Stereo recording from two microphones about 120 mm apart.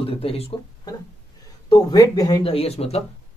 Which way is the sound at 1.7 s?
30° left (ahead or behind).